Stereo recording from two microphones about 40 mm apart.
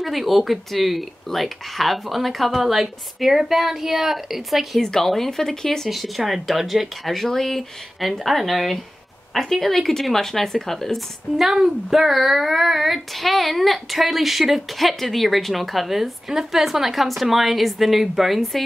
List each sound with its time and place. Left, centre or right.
0.0 s speech: centre
4.8 s speech: centre
5.9 s speech: centre
11.3 s speech: centre